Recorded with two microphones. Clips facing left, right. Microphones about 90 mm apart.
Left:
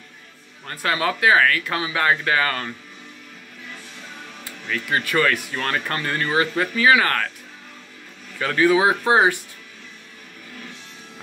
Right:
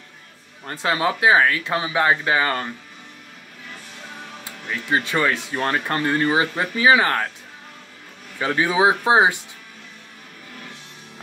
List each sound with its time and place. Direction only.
0.7 s speech: 20° right (ahead or behind)
4.5 s speech: 20° right (ahead or behind)
8.4 s speech: 20° right (ahead or behind)